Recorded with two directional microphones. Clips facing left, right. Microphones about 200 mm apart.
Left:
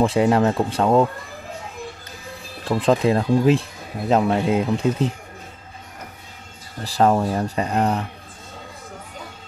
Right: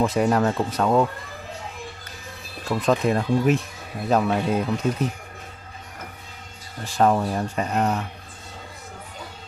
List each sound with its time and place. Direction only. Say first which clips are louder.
0.0 s speech: left 3 dB; 30° left (ahead or behind)
2.7 s speech: left 3 dB; 30° left (ahead or behind)
6.8 s speech: left 2 dB; 35° left (ahead or behind)